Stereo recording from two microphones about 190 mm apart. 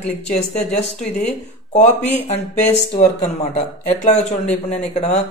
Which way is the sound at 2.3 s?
35° left (ahead or behind).